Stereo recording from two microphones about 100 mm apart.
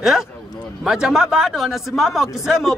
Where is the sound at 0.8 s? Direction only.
5° right (ahead or behind).